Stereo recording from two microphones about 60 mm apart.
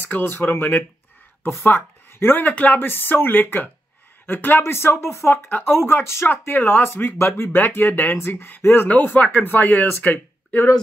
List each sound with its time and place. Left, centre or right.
0.1 s speech: left
2.4 s speech: left